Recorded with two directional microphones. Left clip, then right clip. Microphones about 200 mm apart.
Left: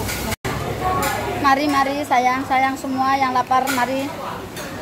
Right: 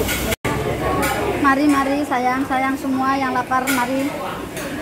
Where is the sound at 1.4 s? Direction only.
30° left (ahead or behind).